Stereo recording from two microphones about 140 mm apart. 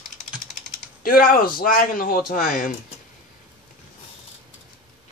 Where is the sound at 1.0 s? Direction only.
85° left.